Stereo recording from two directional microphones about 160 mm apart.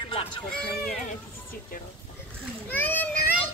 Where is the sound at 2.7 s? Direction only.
10° left (ahead or behind).